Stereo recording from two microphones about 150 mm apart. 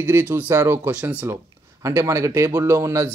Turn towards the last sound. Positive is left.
turn(degrees=-20)  # may be behind; listen again after turning